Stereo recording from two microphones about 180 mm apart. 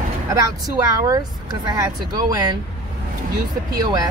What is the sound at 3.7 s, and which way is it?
Speech, 20° right (ahead or behind).